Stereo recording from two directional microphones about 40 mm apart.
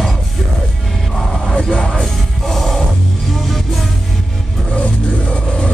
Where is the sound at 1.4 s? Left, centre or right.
Left.